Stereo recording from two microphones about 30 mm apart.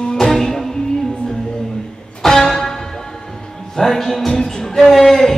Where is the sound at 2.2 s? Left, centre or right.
Centre.